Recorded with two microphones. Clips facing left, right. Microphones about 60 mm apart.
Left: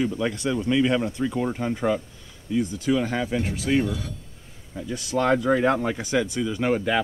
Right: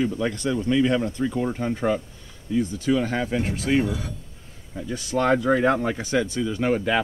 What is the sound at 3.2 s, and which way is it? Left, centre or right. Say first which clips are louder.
Speech: right 1 dB; centre.